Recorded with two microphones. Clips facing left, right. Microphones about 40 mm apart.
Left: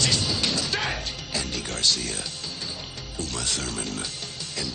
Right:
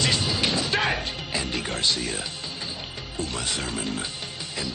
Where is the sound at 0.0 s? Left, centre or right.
Right.